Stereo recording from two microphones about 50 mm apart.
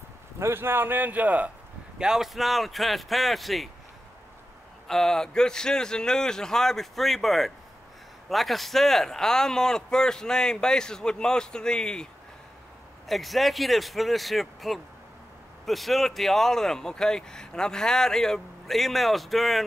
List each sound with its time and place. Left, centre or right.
0.4 s speech: right
2.0 s speech: centre
4.8 s speech: centre
13.1 s speech: centre